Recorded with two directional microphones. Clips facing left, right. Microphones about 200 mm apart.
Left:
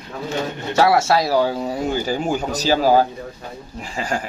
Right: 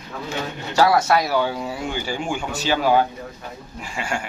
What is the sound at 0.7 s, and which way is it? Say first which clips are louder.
Speech: left 1 dB; 25° left (ahead or behind).